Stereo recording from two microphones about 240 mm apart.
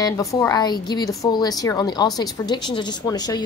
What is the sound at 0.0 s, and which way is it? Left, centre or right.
A woman's voice, centre.